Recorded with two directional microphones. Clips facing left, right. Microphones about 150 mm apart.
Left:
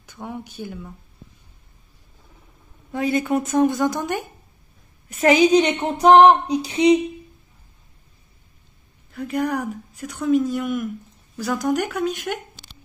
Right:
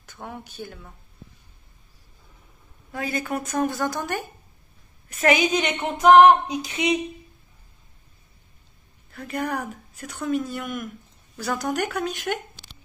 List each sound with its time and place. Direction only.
0.0 s speech: 15° left (ahead or behind)
2.9 s a woman's voice: 25° left (ahead or behind)
5.1 s music: 30° left (ahead or behind)
9.1 s a woman's voice: 5° left (ahead or behind)